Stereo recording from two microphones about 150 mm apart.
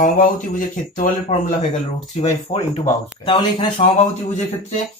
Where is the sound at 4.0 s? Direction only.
45° left (ahead or behind).